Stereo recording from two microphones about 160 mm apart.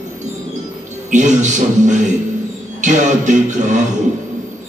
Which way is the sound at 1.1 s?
50° right (ahead or behind).